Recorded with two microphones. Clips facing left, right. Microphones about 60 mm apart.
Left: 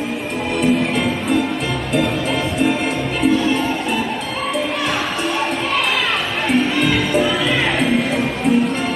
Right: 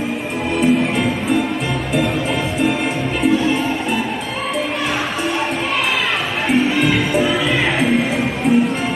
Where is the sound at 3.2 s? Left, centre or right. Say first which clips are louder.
Even; centre.